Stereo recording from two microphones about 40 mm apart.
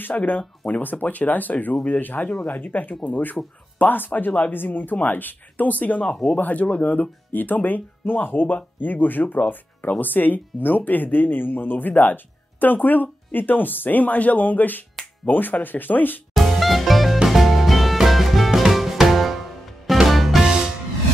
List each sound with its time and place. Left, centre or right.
0.0 s speech: left
16.3 s music: centre
20.4 s music: centre